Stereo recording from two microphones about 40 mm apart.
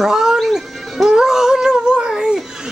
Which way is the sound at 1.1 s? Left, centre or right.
Centre.